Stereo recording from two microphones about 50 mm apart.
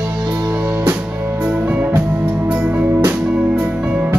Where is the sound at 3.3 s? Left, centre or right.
Right.